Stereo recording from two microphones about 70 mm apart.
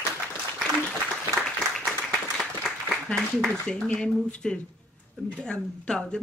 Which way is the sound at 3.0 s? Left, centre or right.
Centre.